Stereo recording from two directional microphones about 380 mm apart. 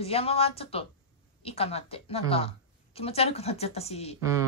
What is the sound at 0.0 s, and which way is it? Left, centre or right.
A woman's voice, centre.